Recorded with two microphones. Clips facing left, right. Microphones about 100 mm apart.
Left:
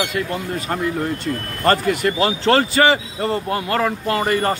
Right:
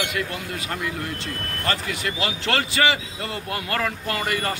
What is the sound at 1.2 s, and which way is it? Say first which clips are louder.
Speech: left 10 dB; 45° left (ahead or behind).